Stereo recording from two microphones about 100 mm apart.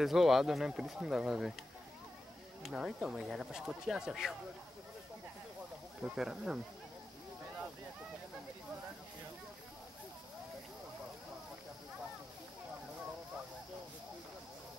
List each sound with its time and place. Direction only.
0.0 s speech: 5° right (ahead or behind)
2.6 s speech: 5° right (ahead or behind)
6.0 s speech: 5° right (ahead or behind)